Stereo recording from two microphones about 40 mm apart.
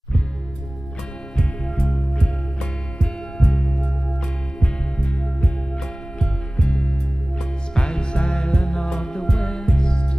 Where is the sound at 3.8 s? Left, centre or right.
Centre.